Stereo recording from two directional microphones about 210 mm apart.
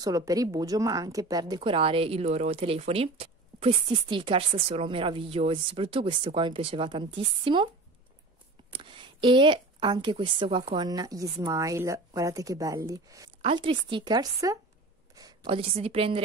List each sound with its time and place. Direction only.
0.0 s a woman's voice: 15° right (ahead or behind)
8.7 s a woman's voice: 25° right (ahead or behind)